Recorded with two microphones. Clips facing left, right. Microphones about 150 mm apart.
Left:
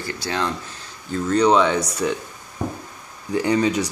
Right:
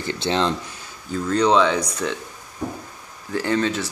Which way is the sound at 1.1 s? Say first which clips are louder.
Left 1 dB; 5° left (ahead or behind).